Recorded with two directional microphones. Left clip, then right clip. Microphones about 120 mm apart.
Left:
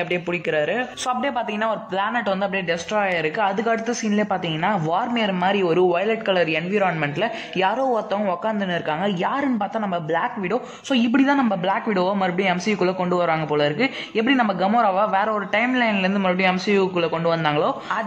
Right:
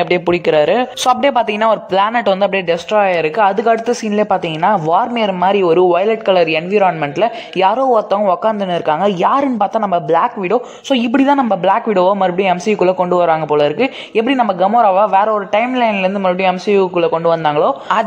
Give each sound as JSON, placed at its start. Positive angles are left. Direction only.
{"t": 0.1, "sound": "a woman's voice", "side_deg": -55}